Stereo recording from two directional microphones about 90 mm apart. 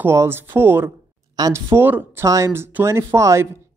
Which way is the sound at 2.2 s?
35° right (ahead or behind).